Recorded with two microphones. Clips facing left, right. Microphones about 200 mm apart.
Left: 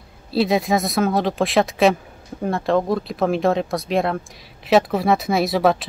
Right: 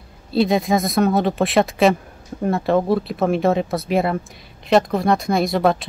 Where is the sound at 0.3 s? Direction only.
Centre (ahead or behind).